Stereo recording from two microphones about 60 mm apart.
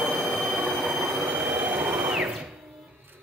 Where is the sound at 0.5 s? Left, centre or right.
Right.